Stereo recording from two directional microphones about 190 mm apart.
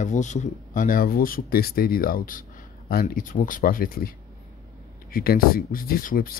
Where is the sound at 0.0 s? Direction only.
40° left (ahead or behind).